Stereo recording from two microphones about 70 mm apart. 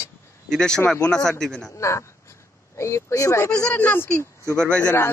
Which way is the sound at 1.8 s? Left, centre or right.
Left.